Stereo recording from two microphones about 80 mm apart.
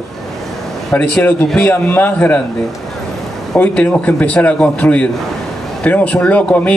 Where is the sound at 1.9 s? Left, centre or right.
Left.